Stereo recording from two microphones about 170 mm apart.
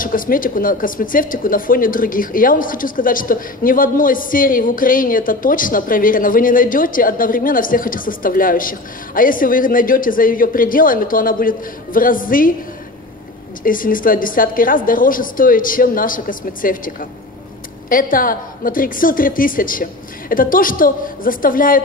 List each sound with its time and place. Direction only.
0.0 s speech: 55° left (ahead or behind)
13.7 s speech: 55° left (ahead or behind)